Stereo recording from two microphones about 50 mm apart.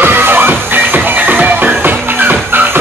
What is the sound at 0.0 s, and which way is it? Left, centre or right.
Music, right.